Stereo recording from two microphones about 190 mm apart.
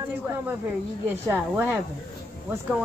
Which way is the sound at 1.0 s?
10° right (ahead or behind).